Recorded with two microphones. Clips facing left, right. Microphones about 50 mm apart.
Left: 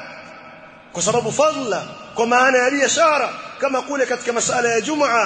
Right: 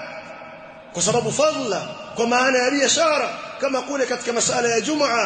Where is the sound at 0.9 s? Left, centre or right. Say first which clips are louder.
Left 2 dB; left.